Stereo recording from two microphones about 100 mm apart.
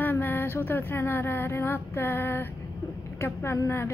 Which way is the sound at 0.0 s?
20° left (ahead or behind).